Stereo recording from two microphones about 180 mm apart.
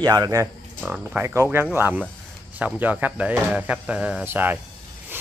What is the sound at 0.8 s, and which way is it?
Speech, 5° right (ahead or behind).